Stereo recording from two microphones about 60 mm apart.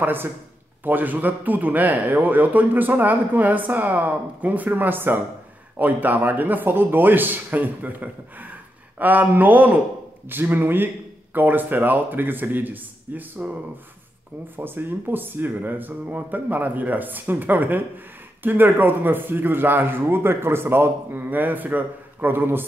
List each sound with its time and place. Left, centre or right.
0.0 s speech: right
14.6 s speech: right